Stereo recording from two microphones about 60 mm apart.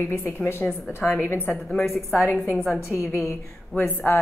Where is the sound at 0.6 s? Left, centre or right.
Centre.